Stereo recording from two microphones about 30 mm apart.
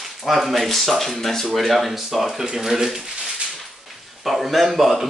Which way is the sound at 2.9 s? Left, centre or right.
Right.